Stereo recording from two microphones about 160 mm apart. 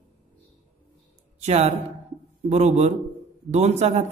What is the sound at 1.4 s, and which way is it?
A woman's voice, 40° right (ahead or behind).